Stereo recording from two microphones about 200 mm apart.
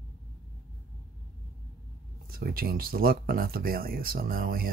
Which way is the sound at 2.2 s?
50° right (ahead or behind).